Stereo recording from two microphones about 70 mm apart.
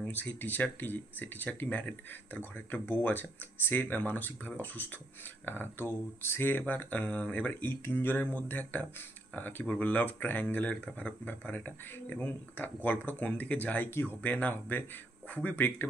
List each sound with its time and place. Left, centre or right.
0.0 s speech: left